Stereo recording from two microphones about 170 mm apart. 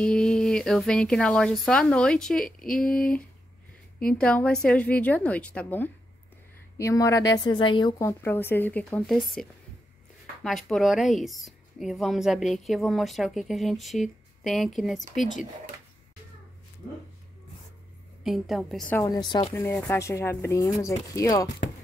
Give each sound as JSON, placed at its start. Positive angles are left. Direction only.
{"t": 0.0, "sound": "a woman's voice", "side_deg": 5}
{"t": 8.0, "sound": "a woman's voice", "side_deg": 15}
{"t": 18.2, "sound": "a woman's voice", "side_deg": 0}
{"t": 18.9, "sound": "speech", "side_deg": 25}
{"t": 19.5, "sound": "a woman's voice", "side_deg": 10}